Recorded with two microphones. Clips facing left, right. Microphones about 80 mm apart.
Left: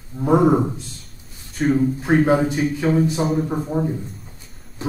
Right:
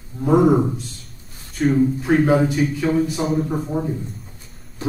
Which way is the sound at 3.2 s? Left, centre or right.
Centre.